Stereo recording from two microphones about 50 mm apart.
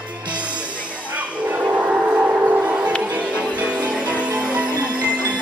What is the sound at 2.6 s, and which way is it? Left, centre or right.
Music, right.